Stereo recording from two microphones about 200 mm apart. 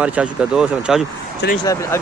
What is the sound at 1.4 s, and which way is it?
Speech, 60° left (ahead or behind).